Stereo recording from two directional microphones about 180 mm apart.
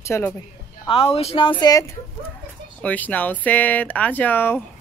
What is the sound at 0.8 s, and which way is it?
Speech, 30° left (ahead or behind).